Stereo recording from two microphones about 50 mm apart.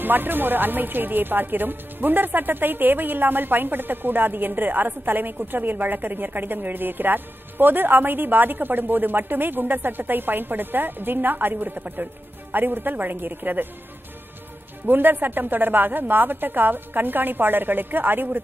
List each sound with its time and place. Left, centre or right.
0.0 s speech: right
14.9 s speech: right